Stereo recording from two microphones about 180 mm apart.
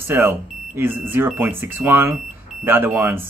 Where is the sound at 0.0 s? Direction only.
10° right (ahead or behind).